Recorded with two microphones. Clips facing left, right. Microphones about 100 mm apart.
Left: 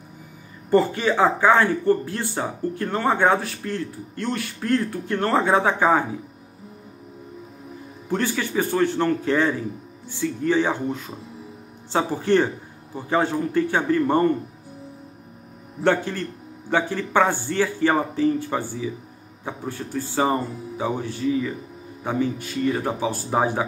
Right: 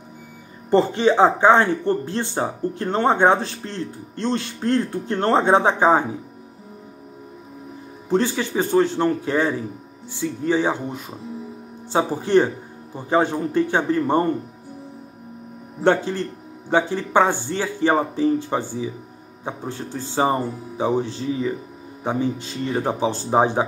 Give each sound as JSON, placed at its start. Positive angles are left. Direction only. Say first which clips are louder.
{"t": 0.7, "sound": "speech", "louder": "right 2 dB", "side_deg": -25}
{"t": 8.1, "sound": "speech", "louder": "right 4 dB", "side_deg": -20}
{"t": 15.8, "sound": "speech", "louder": "right 2 dB", "side_deg": -20}